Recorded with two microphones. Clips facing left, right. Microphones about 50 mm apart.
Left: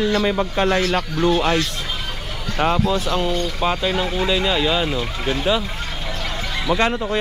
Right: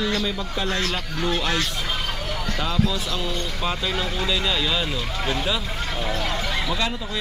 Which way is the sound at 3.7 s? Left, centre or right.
Centre.